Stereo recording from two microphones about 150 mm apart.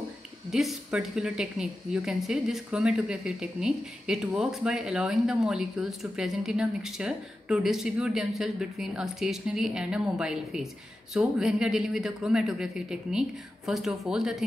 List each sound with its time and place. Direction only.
0.5 s speech: centre (ahead or behind)